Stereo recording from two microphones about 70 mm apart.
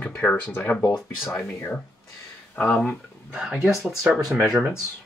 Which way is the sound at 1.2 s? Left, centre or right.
Left.